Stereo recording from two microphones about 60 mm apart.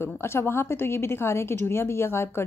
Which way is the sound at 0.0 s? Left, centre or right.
Left.